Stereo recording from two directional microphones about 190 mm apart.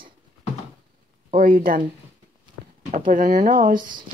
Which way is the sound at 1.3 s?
45° right (ahead or behind).